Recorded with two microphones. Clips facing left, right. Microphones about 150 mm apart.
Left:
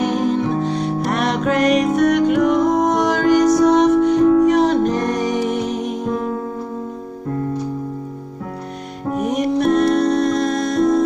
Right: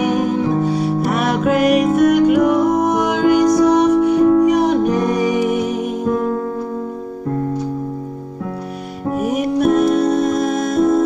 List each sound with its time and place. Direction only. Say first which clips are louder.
0.0 s music: right 1 dB; 10° right (ahead or behind)
9.1 s music: even; 5° right (ahead or behind)